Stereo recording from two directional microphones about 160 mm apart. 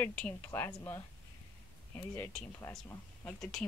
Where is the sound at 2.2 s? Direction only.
5° left (ahead or behind).